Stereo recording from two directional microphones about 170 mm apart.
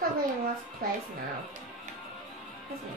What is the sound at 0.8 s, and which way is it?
Speech, 60° right (ahead or behind).